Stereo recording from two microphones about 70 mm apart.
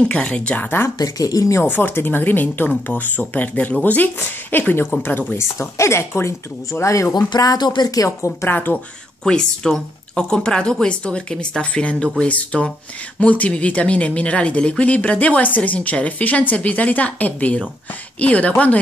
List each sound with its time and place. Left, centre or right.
0.1 s speech: centre
0.9 s speech: left
1.6 s speech: left
5.3 s speech: left
7.2 s speech: left
8.5 s speech: left
9.2 s speech: centre